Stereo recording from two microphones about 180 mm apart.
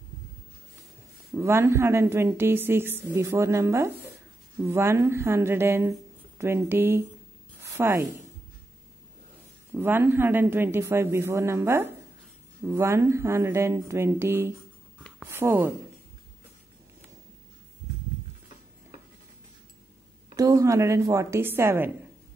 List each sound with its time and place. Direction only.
1.3 s a woman's voice: 15° right (ahead or behind)
9.8 s a woman's voice: 10° right (ahead or behind)
20.3 s a woman's voice: 20° right (ahead or behind)